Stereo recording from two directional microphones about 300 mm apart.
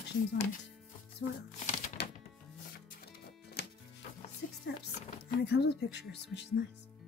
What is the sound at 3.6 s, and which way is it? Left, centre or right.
Music, left.